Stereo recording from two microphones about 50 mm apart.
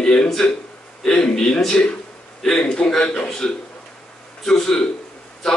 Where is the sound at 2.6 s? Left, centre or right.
Left.